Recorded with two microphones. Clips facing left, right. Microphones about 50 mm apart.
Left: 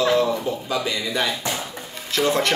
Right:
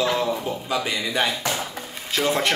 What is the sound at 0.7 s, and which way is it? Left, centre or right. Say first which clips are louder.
Speech: right 1 dB; centre.